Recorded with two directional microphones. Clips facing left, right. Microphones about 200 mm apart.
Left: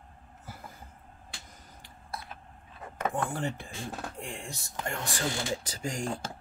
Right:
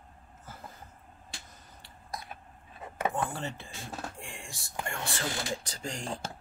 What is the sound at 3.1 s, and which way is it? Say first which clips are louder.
Speech: left 2 dB; 15° left (ahead or behind).